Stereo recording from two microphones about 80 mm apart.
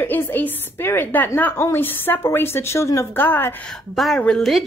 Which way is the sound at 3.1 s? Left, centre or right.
Left.